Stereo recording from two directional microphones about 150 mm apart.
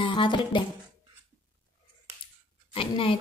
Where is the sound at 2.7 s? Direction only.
35° left (ahead or behind).